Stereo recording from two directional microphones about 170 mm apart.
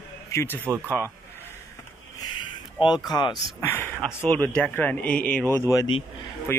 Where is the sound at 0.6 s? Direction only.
15° right (ahead or behind).